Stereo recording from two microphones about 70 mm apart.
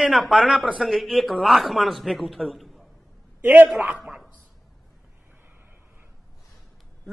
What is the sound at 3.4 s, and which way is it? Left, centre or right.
Speech, right.